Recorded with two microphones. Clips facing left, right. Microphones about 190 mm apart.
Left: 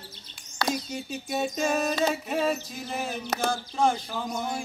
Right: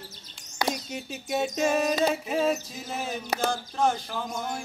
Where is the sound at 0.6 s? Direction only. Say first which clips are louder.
Even; 15° right (ahead or behind).